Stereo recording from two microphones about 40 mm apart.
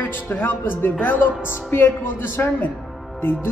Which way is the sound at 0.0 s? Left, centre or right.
Left.